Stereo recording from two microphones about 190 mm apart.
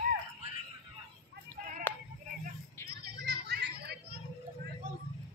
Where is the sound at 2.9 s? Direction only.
60° right (ahead or behind).